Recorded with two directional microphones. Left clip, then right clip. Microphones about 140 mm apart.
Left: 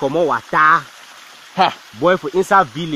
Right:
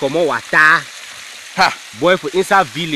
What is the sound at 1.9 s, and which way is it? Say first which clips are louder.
Speech: right 1 dB; 5° right (ahead or behind).